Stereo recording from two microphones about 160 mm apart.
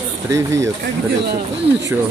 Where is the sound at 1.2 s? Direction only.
90° right.